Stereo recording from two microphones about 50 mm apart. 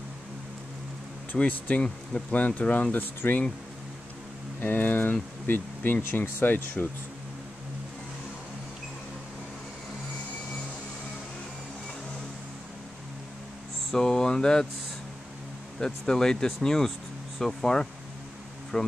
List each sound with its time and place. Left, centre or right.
1.4 s speech: left
4.6 s speech: left
13.9 s speech: centre
15.8 s speech: centre